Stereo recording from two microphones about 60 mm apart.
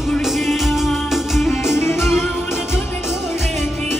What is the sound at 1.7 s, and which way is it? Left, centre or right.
Music, left.